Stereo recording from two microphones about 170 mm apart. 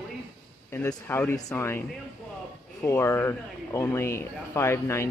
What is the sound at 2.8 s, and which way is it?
Speech, 15° left (ahead or behind).